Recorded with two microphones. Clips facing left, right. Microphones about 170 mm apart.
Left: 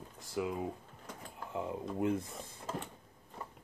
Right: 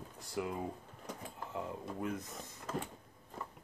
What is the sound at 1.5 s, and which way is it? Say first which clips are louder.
Speech: left 5 dB; 25° left (ahead or behind).